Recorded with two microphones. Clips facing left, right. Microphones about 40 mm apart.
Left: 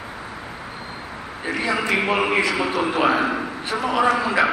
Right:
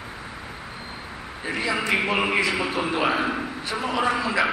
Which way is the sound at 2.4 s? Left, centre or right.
Left.